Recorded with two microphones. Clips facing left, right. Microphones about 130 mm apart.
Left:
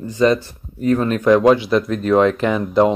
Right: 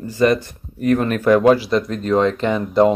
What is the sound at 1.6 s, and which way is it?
Speech, centre (ahead or behind).